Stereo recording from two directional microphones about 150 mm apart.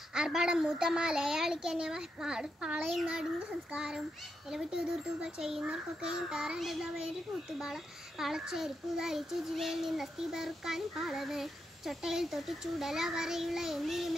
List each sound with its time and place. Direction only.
0.1 s a child's voice: 5° right (ahead or behind)